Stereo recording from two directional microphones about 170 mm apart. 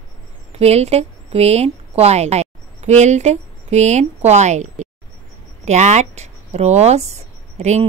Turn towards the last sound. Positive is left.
turn(degrees=-40)  # may be behind; listen again after turning